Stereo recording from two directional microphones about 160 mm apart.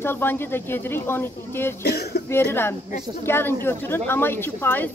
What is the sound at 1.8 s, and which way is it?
Speech, 90° left.